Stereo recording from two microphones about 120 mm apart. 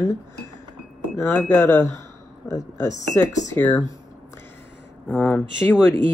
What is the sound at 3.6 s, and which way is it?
Speech, 10° left (ahead or behind).